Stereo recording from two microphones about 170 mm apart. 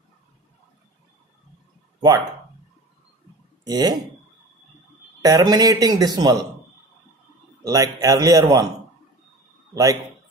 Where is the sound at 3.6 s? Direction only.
25° right (ahead or behind).